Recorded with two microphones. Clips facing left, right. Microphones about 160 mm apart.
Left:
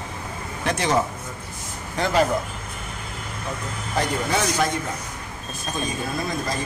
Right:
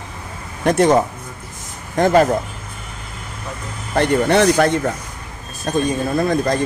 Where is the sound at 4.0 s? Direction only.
70° right (ahead or behind).